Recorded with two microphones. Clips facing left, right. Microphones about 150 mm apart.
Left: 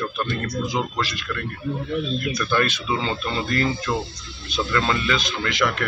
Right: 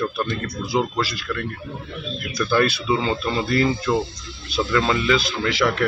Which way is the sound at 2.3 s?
10° right (ahead or behind).